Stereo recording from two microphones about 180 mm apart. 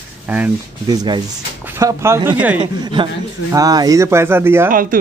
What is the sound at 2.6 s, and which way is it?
A man's voice, 25° right (ahead or behind).